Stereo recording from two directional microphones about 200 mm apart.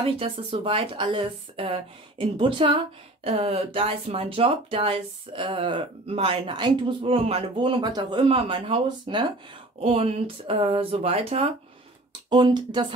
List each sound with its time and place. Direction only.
0.0 s speech: 25° right (ahead or behind)